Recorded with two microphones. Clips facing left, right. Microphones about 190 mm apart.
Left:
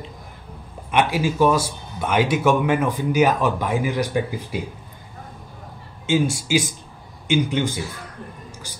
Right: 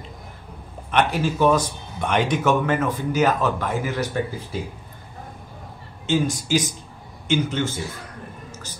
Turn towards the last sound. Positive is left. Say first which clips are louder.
# left 2 dB
turn(degrees=15)  # may be behind; listen again after turning